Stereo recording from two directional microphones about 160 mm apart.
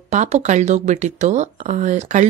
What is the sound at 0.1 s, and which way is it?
Speech, 45° right (ahead or behind).